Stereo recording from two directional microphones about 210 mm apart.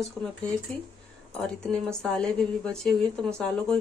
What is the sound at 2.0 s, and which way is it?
Speech, 5° left (ahead or behind).